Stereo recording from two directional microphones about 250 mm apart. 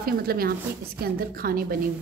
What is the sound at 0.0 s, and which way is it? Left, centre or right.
A woman's voice, right.